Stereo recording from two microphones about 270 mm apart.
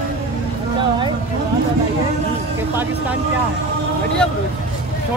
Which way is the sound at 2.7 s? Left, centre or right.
Centre.